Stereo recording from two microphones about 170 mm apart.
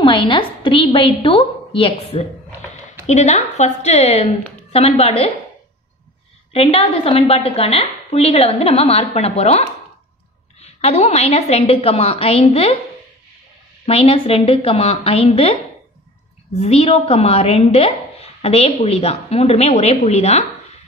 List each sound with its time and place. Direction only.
0.0 s a woman's voice: 30° left (ahead or behind)
6.5 s a woman's voice: 35° left (ahead or behind)
13.8 s a woman's voice: 35° left (ahead or behind)
16.5 s a woman's voice: 35° left (ahead or behind)